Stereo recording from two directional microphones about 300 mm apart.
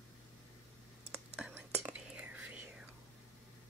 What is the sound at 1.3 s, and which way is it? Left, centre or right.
Whispering, centre.